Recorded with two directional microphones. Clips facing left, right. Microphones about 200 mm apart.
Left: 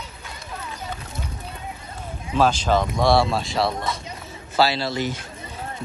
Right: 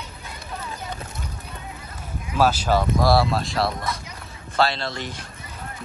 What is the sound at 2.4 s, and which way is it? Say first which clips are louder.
Speech: left 1 dB; 10° right (ahead or behind).